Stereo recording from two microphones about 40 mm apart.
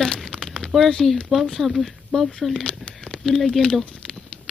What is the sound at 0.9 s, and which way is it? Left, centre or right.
Speech, centre.